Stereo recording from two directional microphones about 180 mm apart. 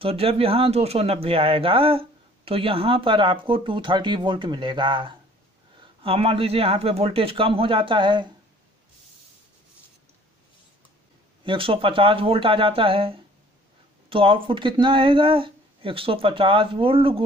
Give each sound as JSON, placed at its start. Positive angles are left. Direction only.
{"t": 0.0, "sound": "speech", "side_deg": -30}
{"t": 11.4, "sound": "speech", "side_deg": -30}